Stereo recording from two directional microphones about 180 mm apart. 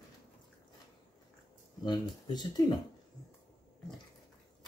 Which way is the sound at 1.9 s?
25° left (ahead or behind).